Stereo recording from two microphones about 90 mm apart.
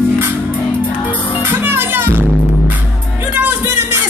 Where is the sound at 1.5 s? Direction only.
25° right (ahead or behind).